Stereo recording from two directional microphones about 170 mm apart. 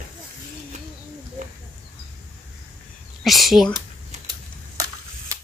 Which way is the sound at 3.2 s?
Centre (ahead or behind).